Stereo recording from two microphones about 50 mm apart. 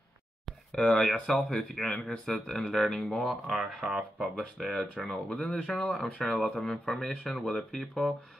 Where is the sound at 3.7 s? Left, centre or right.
Centre.